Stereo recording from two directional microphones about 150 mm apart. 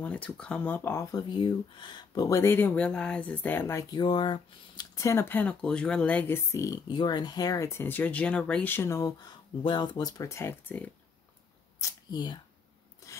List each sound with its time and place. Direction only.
0.0 s speech: 10° left (ahead or behind)
3.9 s speech: 30° left (ahead or behind); by 10.9 s 10° left (ahead or behind)
11.8 s speech: 25° left (ahead or behind)